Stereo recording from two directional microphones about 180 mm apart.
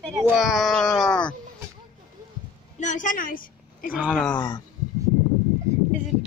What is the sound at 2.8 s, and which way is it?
A woman's voice, 45° left (ahead or behind).